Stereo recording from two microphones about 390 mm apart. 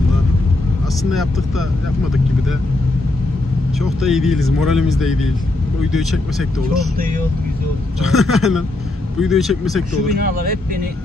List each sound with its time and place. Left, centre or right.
4.0 s speech: centre
8.0 s speech: centre
10.1 s speech: right